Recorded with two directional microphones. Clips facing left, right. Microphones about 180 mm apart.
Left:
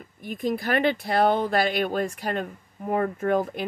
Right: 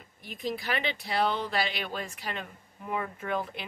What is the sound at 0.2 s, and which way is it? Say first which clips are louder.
Speech: left 7 dB; 50° left (ahead or behind).